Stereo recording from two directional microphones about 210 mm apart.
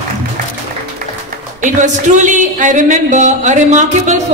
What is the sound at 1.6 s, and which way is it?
Speech, 35° right (ahead or behind).